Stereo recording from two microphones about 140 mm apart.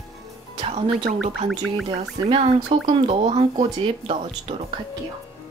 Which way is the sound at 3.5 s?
30° right (ahead or behind).